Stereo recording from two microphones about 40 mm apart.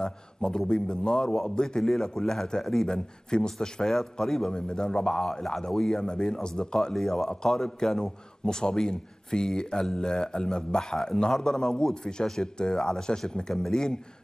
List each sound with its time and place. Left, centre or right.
0.0 s a man's voice: centre